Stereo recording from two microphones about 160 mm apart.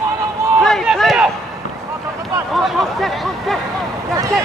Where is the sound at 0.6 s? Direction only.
Centre (ahead or behind).